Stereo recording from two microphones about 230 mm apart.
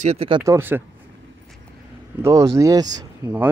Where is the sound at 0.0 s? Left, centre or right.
Right.